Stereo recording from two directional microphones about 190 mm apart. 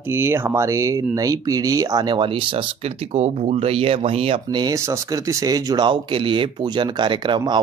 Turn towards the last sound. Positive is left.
turn(degrees=-25)  # may be behind; listen again after turning